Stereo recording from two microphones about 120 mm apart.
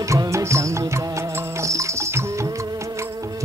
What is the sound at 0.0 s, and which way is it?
Music, 25° right (ahead or behind).